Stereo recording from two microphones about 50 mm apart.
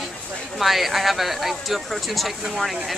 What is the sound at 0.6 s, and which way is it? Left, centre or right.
Speech, centre.